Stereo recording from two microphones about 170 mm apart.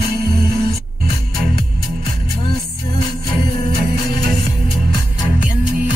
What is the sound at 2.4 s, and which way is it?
Music, 25° left (ahead or behind).